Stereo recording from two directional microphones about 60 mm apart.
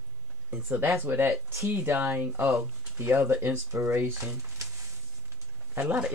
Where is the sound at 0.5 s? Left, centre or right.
Right.